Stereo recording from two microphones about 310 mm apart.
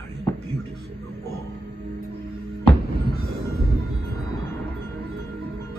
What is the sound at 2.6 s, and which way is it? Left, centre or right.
Music, left.